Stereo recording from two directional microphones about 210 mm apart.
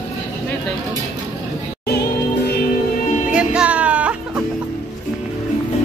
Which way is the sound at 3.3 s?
5° right (ahead or behind).